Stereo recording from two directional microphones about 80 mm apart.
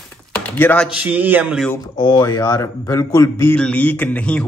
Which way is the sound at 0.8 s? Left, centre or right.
Centre.